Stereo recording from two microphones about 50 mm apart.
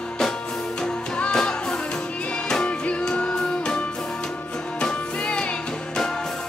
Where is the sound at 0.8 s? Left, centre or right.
Centre.